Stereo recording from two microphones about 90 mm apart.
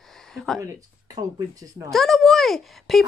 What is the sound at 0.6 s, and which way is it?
Speech, 40° right (ahead or behind).